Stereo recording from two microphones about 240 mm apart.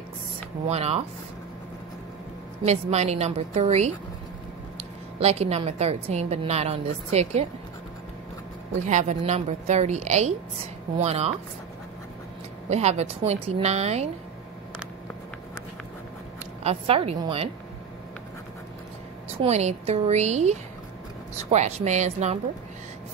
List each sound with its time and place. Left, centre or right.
0.7 s a woman's voice: right
2.6 s a woman's voice: right
5.2 s a woman's voice: right
8.8 s a woman's voice: right
12.6 s a woman's voice: right
16.6 s a woman's voice: right
19.4 s a woman's voice: right